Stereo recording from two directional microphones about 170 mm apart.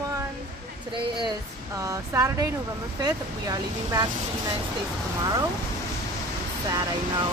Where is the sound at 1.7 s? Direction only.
20° right (ahead or behind).